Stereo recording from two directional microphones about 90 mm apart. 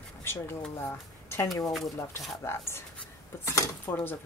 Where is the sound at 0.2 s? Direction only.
25° left (ahead or behind).